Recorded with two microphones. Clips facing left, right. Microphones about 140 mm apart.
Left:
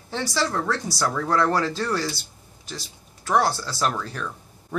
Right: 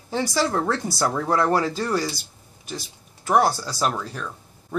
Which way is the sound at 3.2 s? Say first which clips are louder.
Right 2 dB; 20° right (ahead or behind).